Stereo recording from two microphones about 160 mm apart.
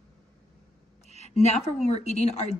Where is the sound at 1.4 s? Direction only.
45° left (ahead or behind).